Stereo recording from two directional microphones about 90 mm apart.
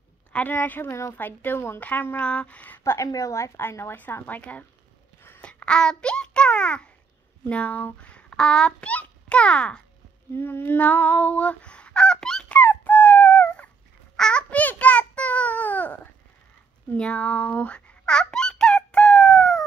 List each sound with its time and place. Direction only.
0.3 s a woman's voice: 20° left (ahead or behind)
2.8 s a woman's voice: 35° left (ahead or behind); by 9.8 s 10° left (ahead or behind)
10.3 s fowl: 25° left (ahead or behind); by 12.5 s 5° left (ahead or behind)
12.5 s dog: 20° left (ahead or behind)
14.1 s a sound: 10° left (ahead or behind)
16.9 s fowl: 15° left (ahead or behind)